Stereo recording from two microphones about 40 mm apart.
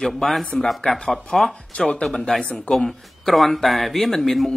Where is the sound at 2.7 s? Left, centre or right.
Centre.